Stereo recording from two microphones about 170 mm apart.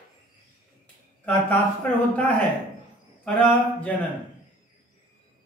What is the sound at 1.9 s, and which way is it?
Speech, 10° left (ahead or behind).